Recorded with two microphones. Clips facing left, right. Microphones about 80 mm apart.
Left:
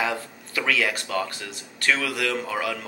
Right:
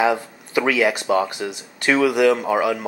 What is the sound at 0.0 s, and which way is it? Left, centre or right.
Speech, right.